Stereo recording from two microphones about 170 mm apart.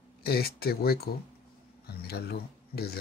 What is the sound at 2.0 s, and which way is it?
Speech, 70° left (ahead or behind).